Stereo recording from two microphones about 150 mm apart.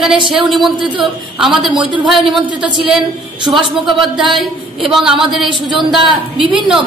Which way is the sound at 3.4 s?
30° right (ahead or behind).